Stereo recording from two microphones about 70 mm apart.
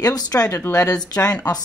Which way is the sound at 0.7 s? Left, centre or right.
Left.